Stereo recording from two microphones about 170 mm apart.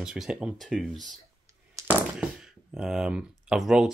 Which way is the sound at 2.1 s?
5° right (ahead or behind).